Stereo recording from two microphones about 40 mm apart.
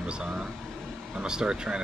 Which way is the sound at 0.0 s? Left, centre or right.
Right.